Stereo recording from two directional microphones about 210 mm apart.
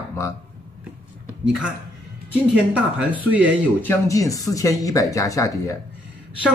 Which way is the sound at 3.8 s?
15° left (ahead or behind).